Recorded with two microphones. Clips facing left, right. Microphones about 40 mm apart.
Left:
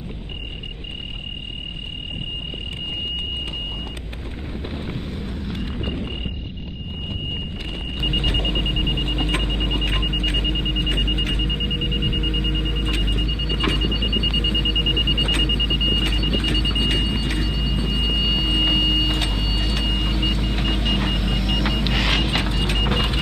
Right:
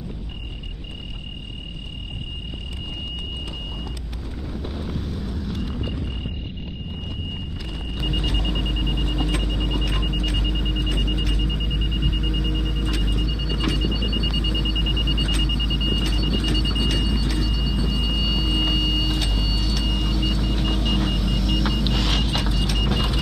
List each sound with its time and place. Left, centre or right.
4.7 s vehicle: left
8.1 s a sound: left
21.9 s vehicle: left